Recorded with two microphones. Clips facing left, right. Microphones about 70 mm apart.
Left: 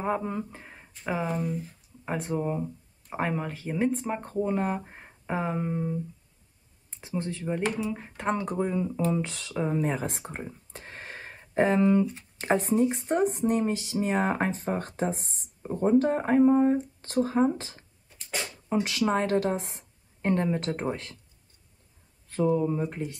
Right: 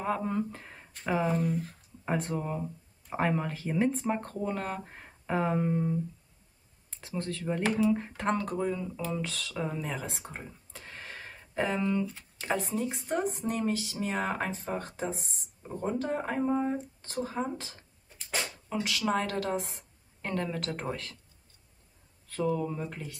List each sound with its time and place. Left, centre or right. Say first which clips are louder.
0.2 s speech: right 1 dB; centre
1.5 s speech: right 1 dB; right
2.0 s speech: left 2 dB; centre
8.5 s a woman's voice: left 4 dB; left
9.8 s speech: left 7 dB; left
10.3 s a sound: left 5 dB; left
12.4 s speech: left 7 dB; left
18.1 s a sound: even; centre
18.7 s a woman's voice: left 5 dB; left
22.3 s a woman's voice: left 5 dB; left